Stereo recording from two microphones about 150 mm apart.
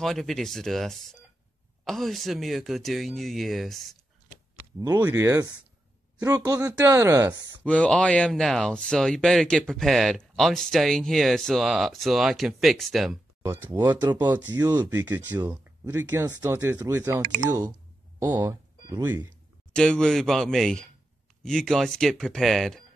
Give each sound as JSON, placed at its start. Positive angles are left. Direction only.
{"t": 0.0, "sound": "speech", "side_deg": 0}
{"t": 4.7, "sound": "speech", "side_deg": -25}
{"t": 7.6, "sound": "speech", "side_deg": 10}
{"t": 13.4, "sound": "speech", "side_deg": -15}
{"t": 19.7, "sound": "speech", "side_deg": 5}